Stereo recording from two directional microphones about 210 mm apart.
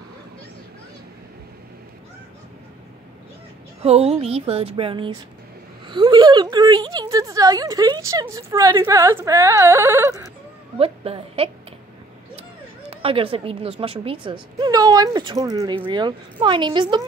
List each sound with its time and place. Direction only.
3.8 s a woman's voice: 30° right (ahead or behind); by 10.3 s 15° right (ahead or behind)
10.8 s a woman's voice: 25° right (ahead or behind)
13.0 s a woman's voice: 25° right (ahead or behind)